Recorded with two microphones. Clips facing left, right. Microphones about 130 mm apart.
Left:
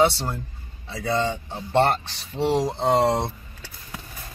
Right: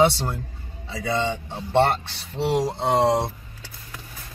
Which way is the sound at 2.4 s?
5° right (ahead or behind).